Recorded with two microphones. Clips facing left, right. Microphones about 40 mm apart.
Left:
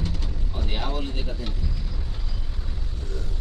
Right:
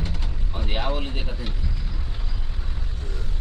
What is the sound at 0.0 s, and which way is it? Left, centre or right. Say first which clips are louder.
Artillery fire: left 1 dB; right.